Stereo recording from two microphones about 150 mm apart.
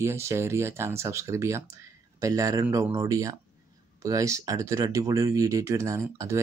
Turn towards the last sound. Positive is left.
turn(degrees=-20)  # may be behind; listen again after turning